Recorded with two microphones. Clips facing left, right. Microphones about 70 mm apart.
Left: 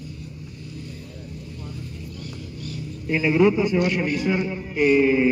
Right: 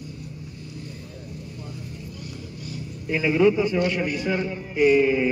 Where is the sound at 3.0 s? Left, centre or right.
Centre.